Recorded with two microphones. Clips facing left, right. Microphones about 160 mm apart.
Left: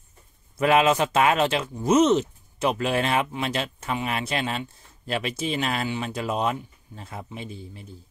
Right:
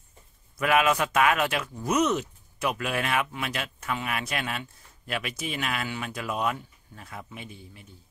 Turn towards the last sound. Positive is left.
turn(degrees=30)  # may be behind; listen again after turning